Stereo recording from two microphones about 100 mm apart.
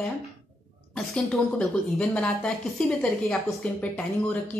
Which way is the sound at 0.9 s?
5° left (ahead or behind).